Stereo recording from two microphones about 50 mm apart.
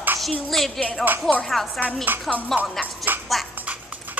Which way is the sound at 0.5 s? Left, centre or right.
Centre.